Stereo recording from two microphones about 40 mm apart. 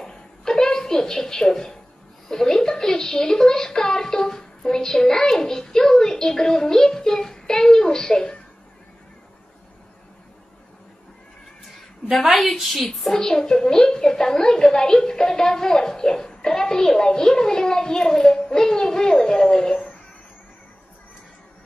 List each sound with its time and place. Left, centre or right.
0.0 s a sound: centre
2.2 s speech: centre
12.7 s a woman's voice: centre
13.2 s speech: centre